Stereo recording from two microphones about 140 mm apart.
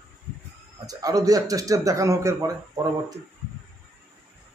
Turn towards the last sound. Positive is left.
turn(degrees=-25)  # may be behind; listen again after turning